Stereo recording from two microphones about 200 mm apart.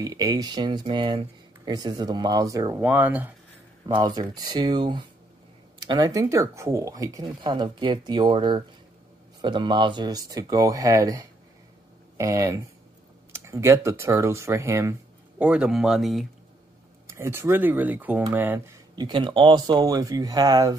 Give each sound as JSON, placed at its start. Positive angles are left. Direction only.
{"t": 0.0, "sound": "speech", "side_deg": -15}
{"t": 3.9, "sound": "speech", "side_deg": -20}
{"t": 17.1, "sound": "speech", "side_deg": -10}
{"t": 18.9, "sound": "speech", "side_deg": -20}